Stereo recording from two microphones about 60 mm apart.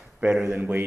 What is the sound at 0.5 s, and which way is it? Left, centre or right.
Speech, right.